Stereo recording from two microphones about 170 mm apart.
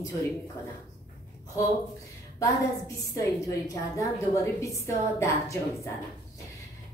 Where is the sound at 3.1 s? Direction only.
20° left (ahead or behind).